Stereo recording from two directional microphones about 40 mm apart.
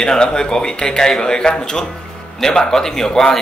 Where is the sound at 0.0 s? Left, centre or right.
Centre.